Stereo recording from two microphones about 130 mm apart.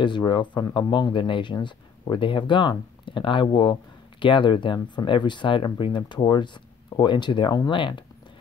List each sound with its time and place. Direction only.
0.0 s speech: 35° left (ahead or behind)